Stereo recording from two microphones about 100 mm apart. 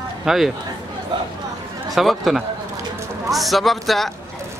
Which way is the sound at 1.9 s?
Centre (ahead or behind).